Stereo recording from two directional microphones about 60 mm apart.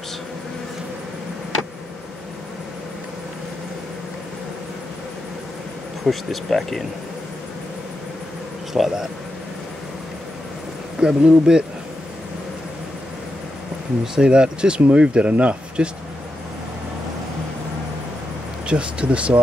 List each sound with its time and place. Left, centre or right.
6.0 s speech: centre
8.7 s speech: centre
11.0 s speech: centre
14.1 s speech: centre
18.7 s speech: centre